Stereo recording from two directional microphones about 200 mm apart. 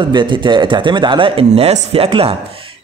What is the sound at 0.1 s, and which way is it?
A man's voice, 25° right (ahead or behind).